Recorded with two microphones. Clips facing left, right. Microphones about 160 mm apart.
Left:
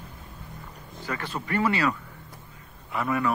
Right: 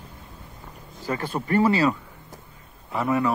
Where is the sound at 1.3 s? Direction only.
35° right (ahead or behind).